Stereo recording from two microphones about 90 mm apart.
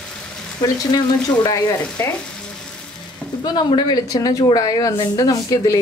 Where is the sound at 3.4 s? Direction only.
55° left (ahead or behind).